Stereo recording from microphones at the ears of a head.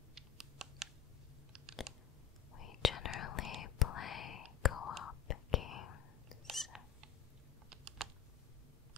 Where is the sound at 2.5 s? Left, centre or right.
Left.